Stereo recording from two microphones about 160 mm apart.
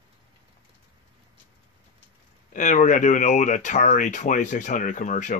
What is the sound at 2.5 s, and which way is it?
Speech, 55° left (ahead or behind).